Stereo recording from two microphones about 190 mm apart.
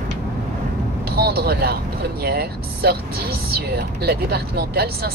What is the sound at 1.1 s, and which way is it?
Vehicle, 55° right (ahead or behind).